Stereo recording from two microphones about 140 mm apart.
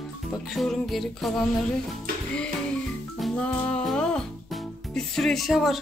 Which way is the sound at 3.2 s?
5° left (ahead or behind).